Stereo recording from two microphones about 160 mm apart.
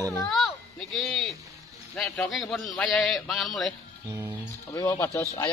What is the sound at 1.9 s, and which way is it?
A man's voice, centre (ahead or behind).